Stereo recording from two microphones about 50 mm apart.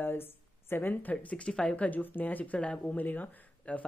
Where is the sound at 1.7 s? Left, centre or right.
Left.